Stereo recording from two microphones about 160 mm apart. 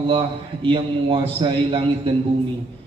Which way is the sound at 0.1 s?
30° right (ahead or behind).